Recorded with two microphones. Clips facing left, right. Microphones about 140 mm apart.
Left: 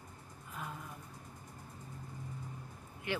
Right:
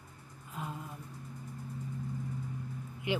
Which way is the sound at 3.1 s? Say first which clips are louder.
Right 4 dB; 15° right (ahead or behind).